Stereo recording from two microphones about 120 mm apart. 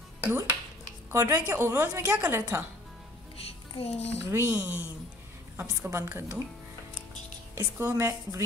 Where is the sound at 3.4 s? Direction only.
55° left (ahead or behind).